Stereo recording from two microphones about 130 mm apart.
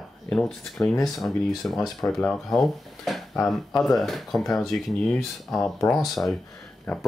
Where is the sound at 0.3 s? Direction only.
5° left (ahead or behind).